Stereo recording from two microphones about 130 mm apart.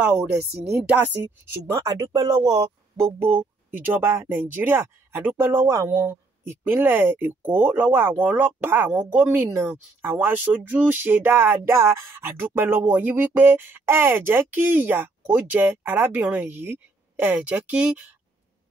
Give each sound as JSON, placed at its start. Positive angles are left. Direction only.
{"t": 0.0, "sound": "speech", "side_deg": -5}
{"t": 1.7, "sound": "speech", "side_deg": -30}